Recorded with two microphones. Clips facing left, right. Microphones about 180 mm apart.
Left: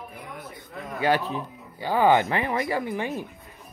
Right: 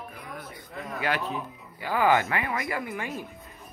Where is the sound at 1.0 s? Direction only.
30° left (ahead or behind).